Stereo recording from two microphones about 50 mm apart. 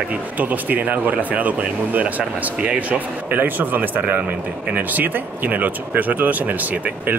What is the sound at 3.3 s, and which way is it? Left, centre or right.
Speech, right.